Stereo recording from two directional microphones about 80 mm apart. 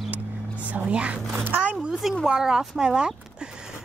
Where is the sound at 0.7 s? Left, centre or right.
Centre.